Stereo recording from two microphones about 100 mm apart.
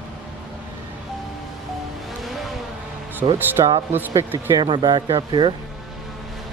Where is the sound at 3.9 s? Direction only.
20° right (ahead or behind).